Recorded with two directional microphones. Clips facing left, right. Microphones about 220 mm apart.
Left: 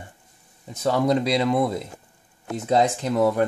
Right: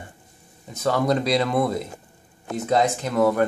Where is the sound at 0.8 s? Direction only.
25° left (ahead or behind).